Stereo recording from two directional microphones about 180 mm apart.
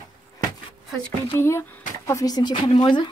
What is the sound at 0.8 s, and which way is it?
Speech, 10° left (ahead or behind).